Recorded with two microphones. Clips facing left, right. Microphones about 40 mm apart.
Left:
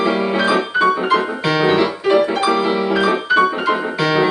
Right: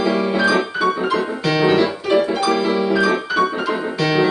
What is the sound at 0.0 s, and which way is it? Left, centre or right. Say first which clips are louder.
Music: left 1 dB; left.